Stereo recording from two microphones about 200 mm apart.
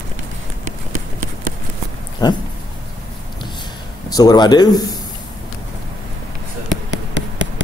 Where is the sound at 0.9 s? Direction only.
40° right (ahead or behind).